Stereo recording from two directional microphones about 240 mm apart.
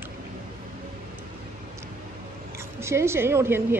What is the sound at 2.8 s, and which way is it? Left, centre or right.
Speech, centre.